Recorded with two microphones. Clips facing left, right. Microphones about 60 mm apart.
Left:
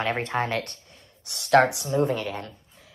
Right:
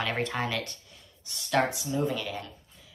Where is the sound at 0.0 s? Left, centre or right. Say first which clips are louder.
Left 4 dB; left.